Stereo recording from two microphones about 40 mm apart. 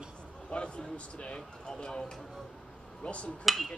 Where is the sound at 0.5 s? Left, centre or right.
Left.